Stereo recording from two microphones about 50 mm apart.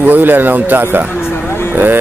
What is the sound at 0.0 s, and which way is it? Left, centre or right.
Speech, right.